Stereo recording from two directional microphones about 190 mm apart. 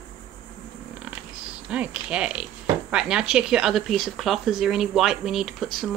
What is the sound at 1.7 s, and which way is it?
Speech, 5° right (ahead or behind).